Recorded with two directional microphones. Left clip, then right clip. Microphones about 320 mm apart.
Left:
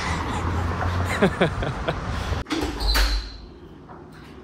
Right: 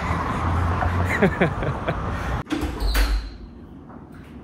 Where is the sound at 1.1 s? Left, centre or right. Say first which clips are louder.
Even; centre.